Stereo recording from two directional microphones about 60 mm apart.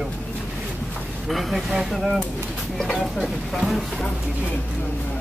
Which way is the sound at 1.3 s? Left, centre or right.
Centre.